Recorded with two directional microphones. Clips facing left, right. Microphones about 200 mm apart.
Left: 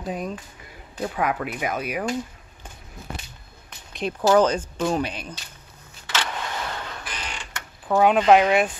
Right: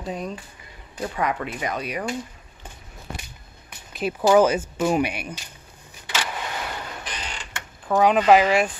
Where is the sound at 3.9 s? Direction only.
10° right (ahead or behind).